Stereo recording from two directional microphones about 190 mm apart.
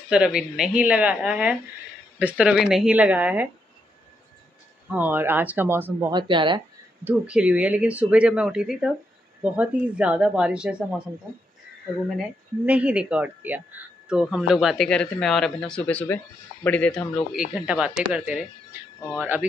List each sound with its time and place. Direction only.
0.1 s speech: 5° right (ahead or behind)
4.8 s speech: 10° right (ahead or behind)
6.1 s speech: 25° right (ahead or behind)
7.1 s speech: 5° right (ahead or behind)
12.2 s speech: 5° right (ahead or behind)